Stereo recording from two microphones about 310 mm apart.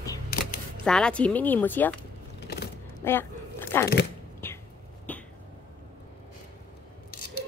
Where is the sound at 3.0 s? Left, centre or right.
Centre.